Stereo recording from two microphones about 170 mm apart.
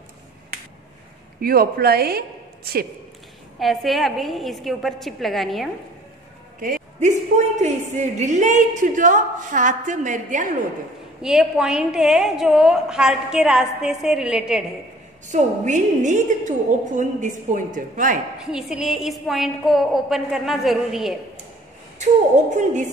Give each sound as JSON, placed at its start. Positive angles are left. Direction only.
{"t": 1.4, "sound": "a woman's voice", "side_deg": -60}
{"t": 3.5, "sound": "a woman's voice", "side_deg": 0}
{"t": 6.6, "sound": "a woman's voice", "side_deg": -50}
{"t": 11.2, "sound": "a woman's voice", "side_deg": -5}
{"t": 15.2, "sound": "a woman's voice", "side_deg": -45}
{"t": 18.4, "sound": "a woman's voice", "side_deg": -5}